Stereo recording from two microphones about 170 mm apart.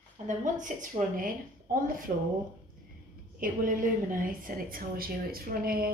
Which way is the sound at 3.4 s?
55° right (ahead or behind).